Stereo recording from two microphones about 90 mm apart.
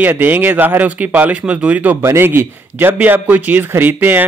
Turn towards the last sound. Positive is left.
turn(degrees=-20)  # may be behind; listen again after turning